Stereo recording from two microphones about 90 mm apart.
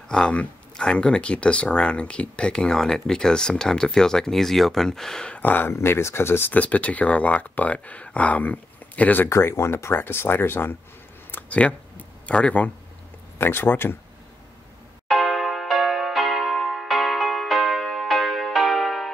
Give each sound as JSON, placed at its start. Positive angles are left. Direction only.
{"t": 0.1, "sound": "speech", "side_deg": 10}
{"t": 5.4, "sound": "speech", "side_deg": 20}
{"t": 9.3, "sound": "speech", "side_deg": 30}
{"t": 11.3, "sound": "a sound", "side_deg": 15}
{"t": 12.3, "sound": "speech", "side_deg": 15}
{"t": 15.0, "sound": "music", "side_deg": 0}